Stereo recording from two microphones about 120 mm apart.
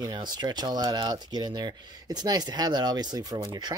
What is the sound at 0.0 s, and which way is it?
Speech, 35° right (ahead or behind).